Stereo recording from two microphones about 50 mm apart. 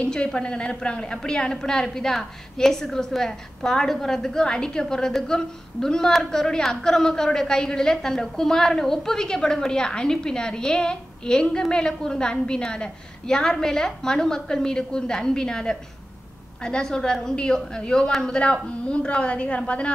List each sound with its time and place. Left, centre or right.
0.1 s a woman's voice: centre